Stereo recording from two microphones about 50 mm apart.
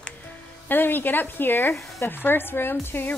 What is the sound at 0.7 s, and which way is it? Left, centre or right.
Speech, left.